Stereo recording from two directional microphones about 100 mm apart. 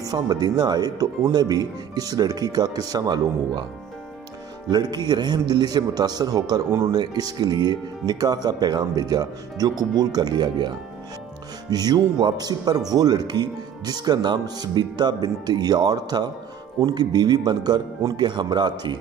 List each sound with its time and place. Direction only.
0.0 s speech: 40° right (ahead or behind)
4.6 s speech: 45° right (ahead or behind)
11.7 s speech: 40° right (ahead or behind)